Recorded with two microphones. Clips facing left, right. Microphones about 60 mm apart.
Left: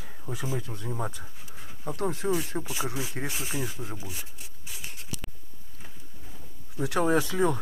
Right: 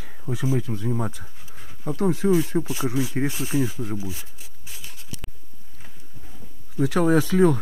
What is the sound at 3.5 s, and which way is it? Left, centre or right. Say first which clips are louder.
Speech: right 11 dB; centre.